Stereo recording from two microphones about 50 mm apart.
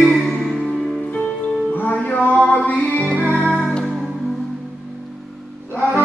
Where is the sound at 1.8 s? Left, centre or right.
Left.